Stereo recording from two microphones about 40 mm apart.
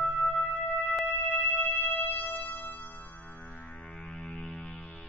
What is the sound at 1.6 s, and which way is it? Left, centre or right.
Music, left.